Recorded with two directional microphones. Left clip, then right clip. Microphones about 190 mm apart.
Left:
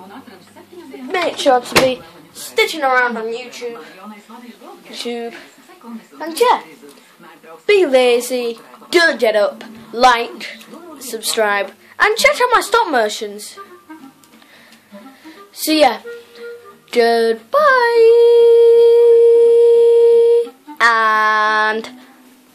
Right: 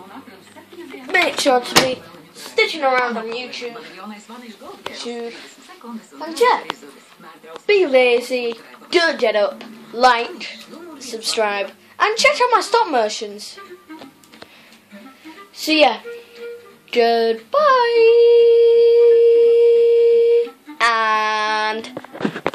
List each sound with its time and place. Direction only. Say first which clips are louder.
1.1 s speech: left 1 dB; centre (ahead or behind)
2.5 s a woman's voice: left 2 dB; 10° left (ahead or behind)
4.9 s a child's voice: left 6 dB; 35° left (ahead or behind)
7.6 s a woman's voice: left 2 dB; 20° left (ahead or behind)
15.5 s a woman's voice: left 2 dB; 15° left (ahead or behind)
16.9 s child singing: left 2 dB; 10° left (ahead or behind)